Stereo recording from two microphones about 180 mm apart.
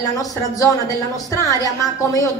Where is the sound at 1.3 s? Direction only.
20° left (ahead or behind).